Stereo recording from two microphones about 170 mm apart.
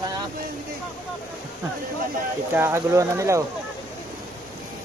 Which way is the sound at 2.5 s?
15° right (ahead or behind).